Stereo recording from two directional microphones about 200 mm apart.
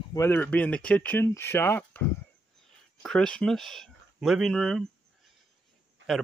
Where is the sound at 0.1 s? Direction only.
10° left (ahead or behind).